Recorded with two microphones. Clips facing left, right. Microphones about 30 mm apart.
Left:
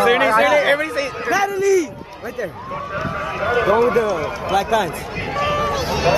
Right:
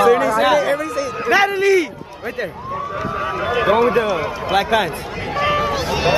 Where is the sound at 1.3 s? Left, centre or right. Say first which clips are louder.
Right 3 dB; right.